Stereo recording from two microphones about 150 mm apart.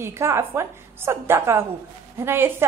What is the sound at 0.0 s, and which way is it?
A woman's voice, 20° right (ahead or behind).